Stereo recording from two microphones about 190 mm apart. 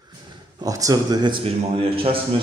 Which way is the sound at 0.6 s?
20° right (ahead or behind).